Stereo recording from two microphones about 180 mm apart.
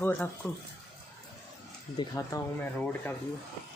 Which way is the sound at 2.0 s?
20° left (ahead or behind).